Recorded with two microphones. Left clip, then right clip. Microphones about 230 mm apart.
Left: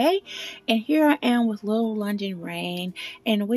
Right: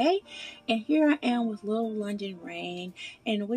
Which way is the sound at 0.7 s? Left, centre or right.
Left.